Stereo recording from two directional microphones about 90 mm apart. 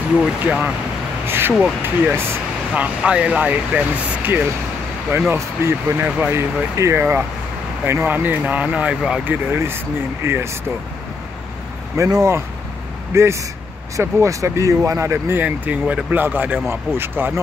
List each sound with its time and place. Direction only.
0.2 s speech: 10° right (ahead or behind)
1.2 s a sound: 25° right (ahead or behind)
1.6 s speech: 15° right (ahead or behind)
6.3 s speech: 30° right (ahead or behind)
12.0 s speech: 35° right (ahead or behind)
15.4 s speech: 15° right (ahead or behind)